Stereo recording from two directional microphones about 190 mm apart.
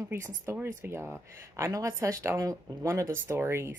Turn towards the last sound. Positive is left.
turn(degrees=-15)  # may be behind; listen again after turning